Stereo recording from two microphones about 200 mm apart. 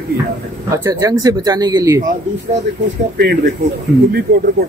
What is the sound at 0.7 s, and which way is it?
Speech, 15° right (ahead or behind).